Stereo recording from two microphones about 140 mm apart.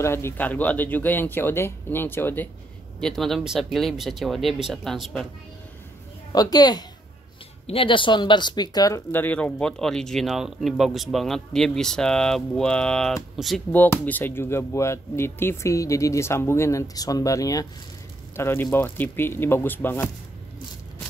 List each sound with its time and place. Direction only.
0.0 s speech: 15° left (ahead or behind)
3.0 s speech: centre (ahead or behind)
6.3 s speech: 30° left (ahead or behind)
7.6 s speech: 40° left (ahead or behind)
9.1 s speech: 10° left (ahead or behind)
13.7 s speech: 15° left (ahead or behind)